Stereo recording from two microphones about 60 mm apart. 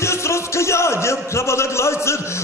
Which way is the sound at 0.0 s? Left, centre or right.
Left.